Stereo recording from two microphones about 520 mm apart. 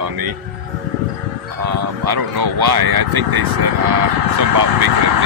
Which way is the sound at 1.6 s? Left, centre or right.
Right.